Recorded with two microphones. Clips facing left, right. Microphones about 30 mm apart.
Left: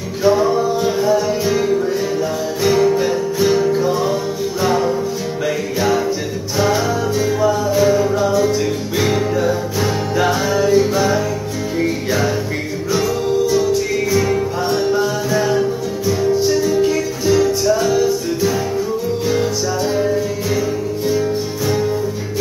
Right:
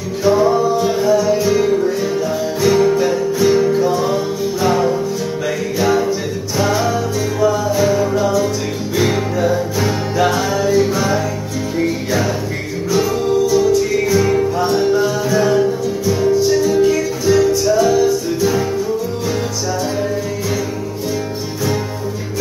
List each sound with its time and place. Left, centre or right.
0.2 s music: centre
3.4 s music: centre
13.5 s music: centre
13.9 s music: centre
16.8 s music: centre